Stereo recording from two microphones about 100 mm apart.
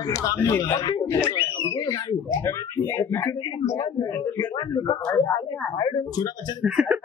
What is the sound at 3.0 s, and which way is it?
A man's voice, 25° left (ahead or behind).